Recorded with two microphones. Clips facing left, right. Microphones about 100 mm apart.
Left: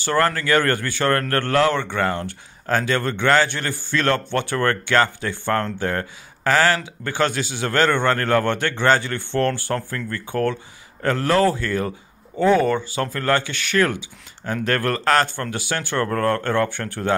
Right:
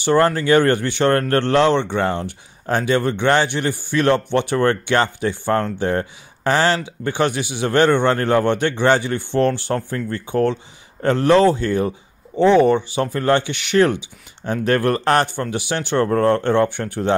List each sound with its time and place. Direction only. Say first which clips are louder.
0.0 s speech: right 4 dB; 20° right (ahead or behind)